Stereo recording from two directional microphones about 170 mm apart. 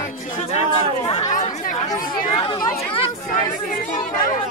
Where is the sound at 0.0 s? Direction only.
45° left (ahead or behind).